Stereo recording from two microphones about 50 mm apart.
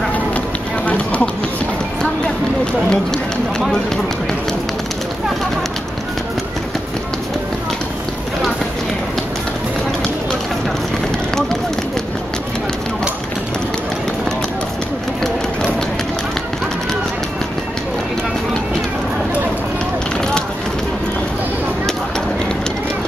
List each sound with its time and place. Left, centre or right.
0.8 s run: left
2.6 s run: centre